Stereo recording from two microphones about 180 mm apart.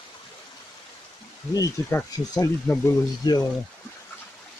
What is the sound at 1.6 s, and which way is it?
Speech, 20° left (ahead or behind).